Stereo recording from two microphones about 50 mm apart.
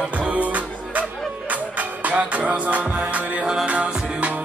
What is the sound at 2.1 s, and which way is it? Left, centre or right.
Music, right.